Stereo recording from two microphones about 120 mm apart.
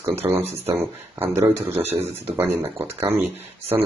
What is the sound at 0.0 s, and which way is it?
Speech, 20° right (ahead or behind).